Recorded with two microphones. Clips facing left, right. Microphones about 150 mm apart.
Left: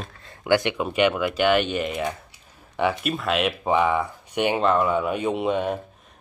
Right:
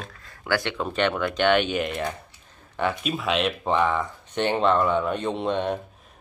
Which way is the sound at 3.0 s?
Centre (ahead or behind).